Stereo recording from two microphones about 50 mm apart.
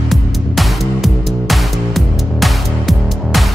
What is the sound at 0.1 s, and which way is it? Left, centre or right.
Music, centre.